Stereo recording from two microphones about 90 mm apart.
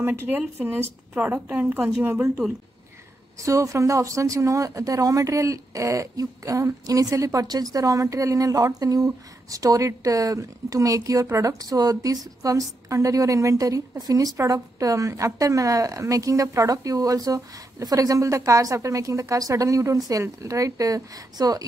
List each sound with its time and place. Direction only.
0.0 s a woman's voice: 25° right (ahead or behind)
3.3 s speech: 35° right (ahead or behind)